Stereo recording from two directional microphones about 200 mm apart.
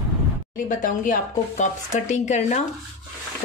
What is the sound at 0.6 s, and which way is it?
Speech, 40° left (ahead or behind).